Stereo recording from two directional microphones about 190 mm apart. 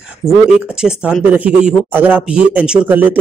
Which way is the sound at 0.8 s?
5° right (ahead or behind).